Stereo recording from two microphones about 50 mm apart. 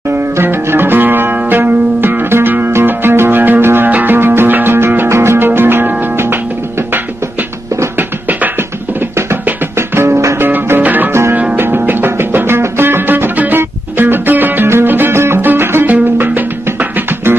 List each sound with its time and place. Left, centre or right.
0.4 s music: right
4.7 s music: right
5.4 s music: right
9.3 s music: right
10.5 s music: right
15.1 s music: right
15.4 s music: right